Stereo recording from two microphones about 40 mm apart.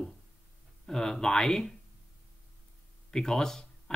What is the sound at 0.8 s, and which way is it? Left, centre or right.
Speech, centre.